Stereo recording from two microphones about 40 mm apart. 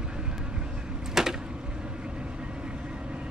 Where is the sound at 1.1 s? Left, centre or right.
Centre.